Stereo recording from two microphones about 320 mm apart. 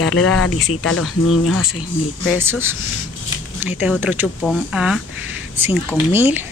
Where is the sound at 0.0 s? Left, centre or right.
Left.